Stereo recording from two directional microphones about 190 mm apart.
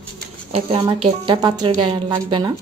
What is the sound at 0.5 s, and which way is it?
A woman's voice, 30° right (ahead or behind).